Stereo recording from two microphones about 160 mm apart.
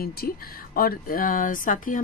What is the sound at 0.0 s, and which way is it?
Speech, 70° left (ahead or behind).